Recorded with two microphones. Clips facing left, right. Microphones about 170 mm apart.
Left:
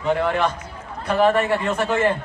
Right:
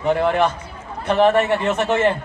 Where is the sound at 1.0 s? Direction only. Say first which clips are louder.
Right 2 dB; 25° right (ahead or behind).